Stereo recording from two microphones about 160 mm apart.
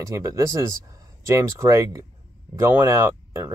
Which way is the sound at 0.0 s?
20° right (ahead or behind).